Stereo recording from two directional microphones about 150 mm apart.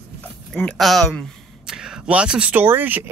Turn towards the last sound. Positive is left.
turn(degrees=-10)  # may be behind; listen again after turning